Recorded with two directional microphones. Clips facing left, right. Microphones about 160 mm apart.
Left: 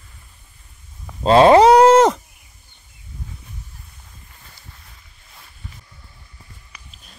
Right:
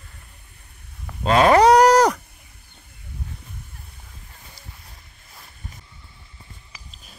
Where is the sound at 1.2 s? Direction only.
30° left (ahead or behind).